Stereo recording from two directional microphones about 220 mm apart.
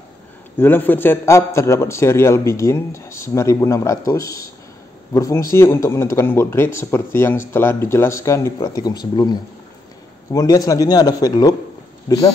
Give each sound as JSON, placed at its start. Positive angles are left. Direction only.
{"t": 0.6, "sound": "a man's voice", "side_deg": 10}